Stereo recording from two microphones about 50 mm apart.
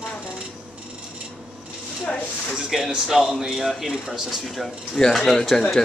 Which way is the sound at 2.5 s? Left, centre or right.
Centre.